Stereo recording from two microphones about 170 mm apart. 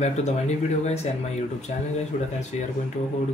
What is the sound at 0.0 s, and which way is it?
Speech, 40° left (ahead or behind).